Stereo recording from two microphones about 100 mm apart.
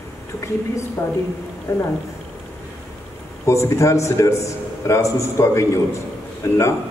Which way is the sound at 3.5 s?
30° left (ahead or behind).